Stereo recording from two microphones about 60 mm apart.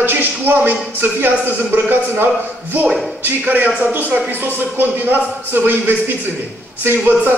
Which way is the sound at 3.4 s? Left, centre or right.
Right.